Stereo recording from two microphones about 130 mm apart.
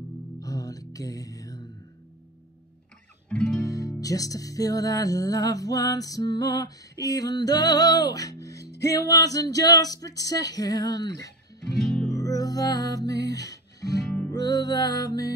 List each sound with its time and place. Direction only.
0.4 s music: 25° left (ahead or behind)
3.3 s music: 5° left (ahead or behind)
3.5 s music: 25° left (ahead or behind)
11.8 s music: 5° left (ahead or behind)
12.1 s music: 25° left (ahead or behind)
14.0 s music: 10° left (ahead or behind)
14.3 s music: 30° left (ahead or behind)